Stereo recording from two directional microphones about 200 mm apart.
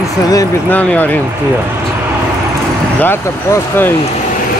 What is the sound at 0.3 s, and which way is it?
Speech, 20° left (ahead or behind).